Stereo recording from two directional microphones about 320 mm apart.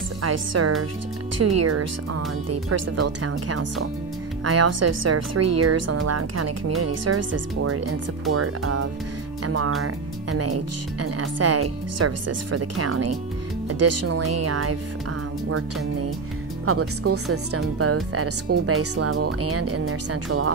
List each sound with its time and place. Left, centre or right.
0.2 s speech: right
10.3 s speech: right
16.6 s speech: right